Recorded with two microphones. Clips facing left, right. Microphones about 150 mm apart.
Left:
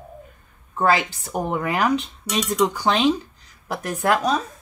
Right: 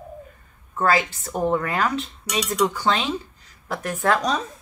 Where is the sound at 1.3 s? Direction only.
15° left (ahead or behind).